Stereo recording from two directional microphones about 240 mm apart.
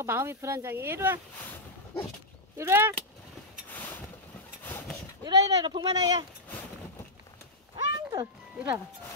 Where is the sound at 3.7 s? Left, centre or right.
Centre.